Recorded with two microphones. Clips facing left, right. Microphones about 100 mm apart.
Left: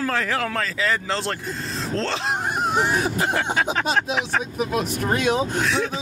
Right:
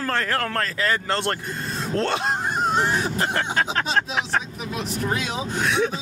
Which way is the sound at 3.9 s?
Centre (ahead or behind).